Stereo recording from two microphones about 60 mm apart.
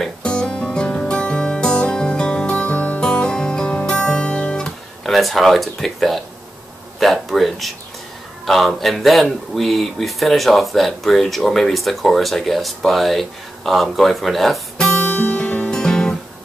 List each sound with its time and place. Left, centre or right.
0.2 s music: centre
3.0 s guitar: centre
7.0 s speech: centre
14.8 s guitar: left
15.7 s guitar: centre